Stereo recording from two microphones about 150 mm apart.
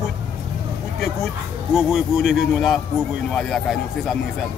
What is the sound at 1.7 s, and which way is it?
Speech, 5° right (ahead or behind).